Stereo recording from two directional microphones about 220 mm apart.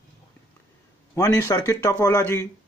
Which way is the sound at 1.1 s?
15° left (ahead or behind).